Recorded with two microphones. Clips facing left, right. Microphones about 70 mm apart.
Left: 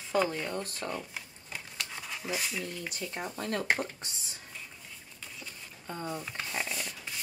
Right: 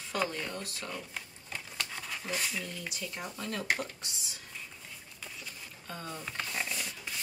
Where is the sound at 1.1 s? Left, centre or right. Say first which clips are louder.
Even; centre.